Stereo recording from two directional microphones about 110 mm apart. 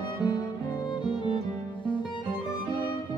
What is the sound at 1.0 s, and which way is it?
Music, 45° left (ahead or behind).